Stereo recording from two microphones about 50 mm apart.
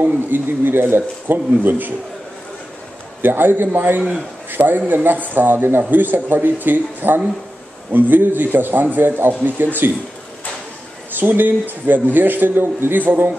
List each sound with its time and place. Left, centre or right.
0.0 s a man's voice: right
3.2 s a man's voice: right
11.1 s a man's voice: right